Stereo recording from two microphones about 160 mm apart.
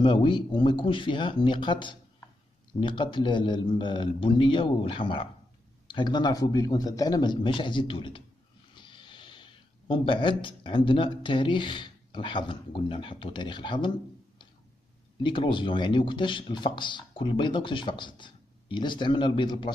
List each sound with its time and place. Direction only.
0.0 s speech: 30° left (ahead or behind)
15.2 s speech: 30° left (ahead or behind)